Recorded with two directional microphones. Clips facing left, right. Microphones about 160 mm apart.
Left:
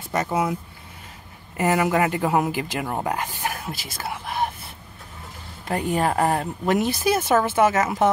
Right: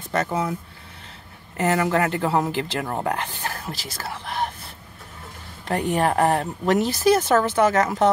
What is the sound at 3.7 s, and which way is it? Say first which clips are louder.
Speech: even; 50° left (ahead or behind).